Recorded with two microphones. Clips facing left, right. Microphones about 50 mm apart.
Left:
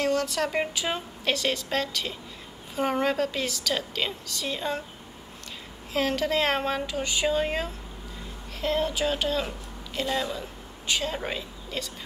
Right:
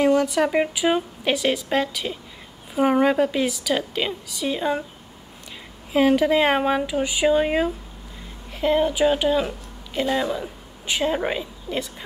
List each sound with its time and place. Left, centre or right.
0.0 s a woman's voice: centre
5.9 s a woman's voice: centre